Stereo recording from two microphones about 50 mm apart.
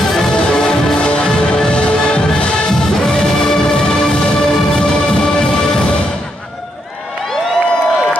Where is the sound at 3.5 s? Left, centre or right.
Centre.